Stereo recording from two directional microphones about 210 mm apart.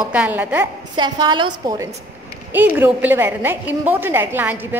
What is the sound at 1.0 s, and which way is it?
A woman's voice, 20° right (ahead or behind).